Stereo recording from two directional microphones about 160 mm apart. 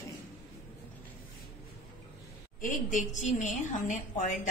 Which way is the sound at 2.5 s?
55° left (ahead or behind).